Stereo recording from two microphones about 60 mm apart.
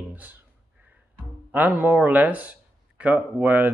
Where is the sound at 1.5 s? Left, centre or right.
Right.